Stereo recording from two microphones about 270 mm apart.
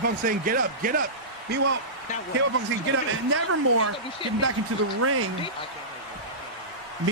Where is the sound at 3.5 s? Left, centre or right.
Right.